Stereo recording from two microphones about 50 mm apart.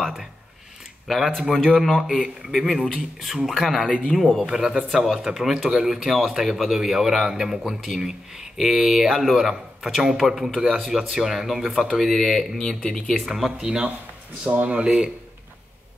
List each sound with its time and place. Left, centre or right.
1.0 s speech: centre
2.0 s a man's voice: centre
2.5 s speech: centre
4.5 s a man's voice: centre
12.5 s speech: centre
13.2 s a man's voice: centre
14.4 s a man's voice: right